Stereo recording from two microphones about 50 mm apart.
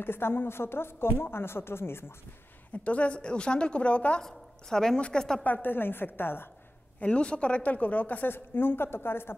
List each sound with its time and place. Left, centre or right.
0.0 s a woman's voice: left
2.7 s a woman's voice: left
4.2 s a woman's voice: centre
5.4 s a woman's voice: left
7.0 s a woman's voice: left